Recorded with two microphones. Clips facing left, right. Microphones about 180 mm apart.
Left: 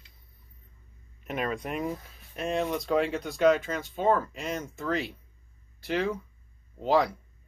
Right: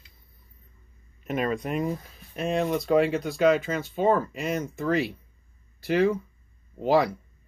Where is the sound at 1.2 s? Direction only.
Centre (ahead or behind).